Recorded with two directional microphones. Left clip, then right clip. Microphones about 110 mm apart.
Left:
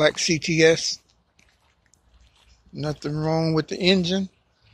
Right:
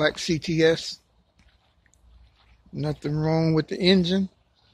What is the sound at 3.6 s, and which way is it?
Speech, 25° right (ahead or behind).